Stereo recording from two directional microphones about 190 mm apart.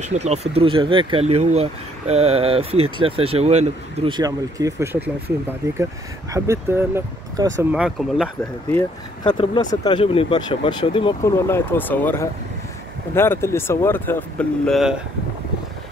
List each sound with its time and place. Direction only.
0.0 s speech: 35° right (ahead or behind)
4.1 s speech: 20° right (ahead or behind)
6.3 s speech: 15° right (ahead or behind)
7.7 s speech: 5° right (ahead or behind)
9.2 s speech: 25° left (ahead or behind)
11.2 s speech: 15° left (ahead or behind)